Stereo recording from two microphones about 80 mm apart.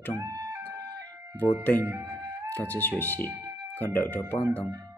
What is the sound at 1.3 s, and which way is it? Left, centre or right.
Speech, left.